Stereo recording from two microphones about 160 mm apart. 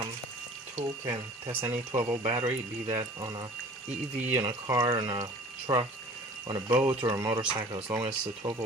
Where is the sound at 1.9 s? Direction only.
30° right (ahead or behind).